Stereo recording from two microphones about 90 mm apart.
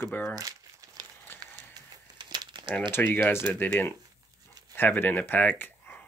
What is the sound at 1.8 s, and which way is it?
Crumpling, 55° right (ahead or behind).